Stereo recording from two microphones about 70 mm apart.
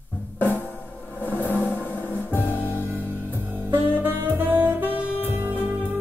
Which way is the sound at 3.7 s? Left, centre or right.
Right.